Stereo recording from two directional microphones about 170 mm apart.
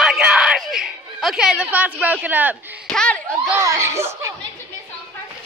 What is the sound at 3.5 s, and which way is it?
Speech, 15° right (ahead or behind).